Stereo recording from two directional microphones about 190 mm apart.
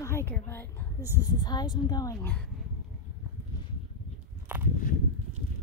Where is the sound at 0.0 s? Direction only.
10° left (ahead or behind).